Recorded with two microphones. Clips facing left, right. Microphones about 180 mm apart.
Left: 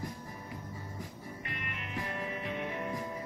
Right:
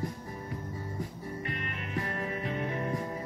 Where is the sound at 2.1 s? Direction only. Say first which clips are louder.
Right 3 dB; 35° right (ahead or behind).